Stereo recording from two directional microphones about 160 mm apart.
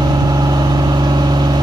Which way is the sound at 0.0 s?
25° right (ahead or behind).